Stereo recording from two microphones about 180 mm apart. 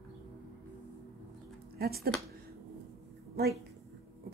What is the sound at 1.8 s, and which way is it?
Speech, 60° right (ahead or behind).